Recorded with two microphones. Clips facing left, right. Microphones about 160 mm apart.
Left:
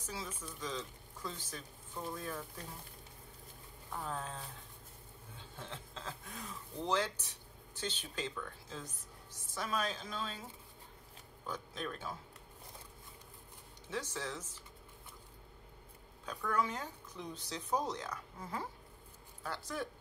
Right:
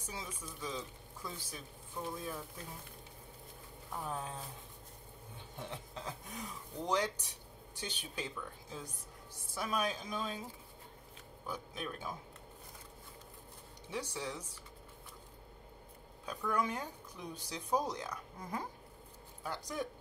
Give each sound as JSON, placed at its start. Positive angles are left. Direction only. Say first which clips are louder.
{"t": 0.0, "sound": "speech", "louder": "left 1 dB", "side_deg": -15}
{"t": 4.0, "sound": "speech", "louder": "right 1 dB", "side_deg": -15}
{"t": 5.4, "sound": "music", "louder": "right 3 dB", "side_deg": -15}
{"t": 6.9, "sound": "speech", "louder": "right 1 dB", "side_deg": -15}
{"t": 11.4, "sound": "speech", "louder": "even", "side_deg": -10}
{"t": 13.8, "sound": "speech", "louder": "even", "side_deg": -15}
{"t": 16.3, "sound": "speech", "louder": "even", "side_deg": -15}